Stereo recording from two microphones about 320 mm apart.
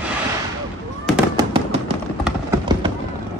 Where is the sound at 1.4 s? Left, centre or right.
Centre.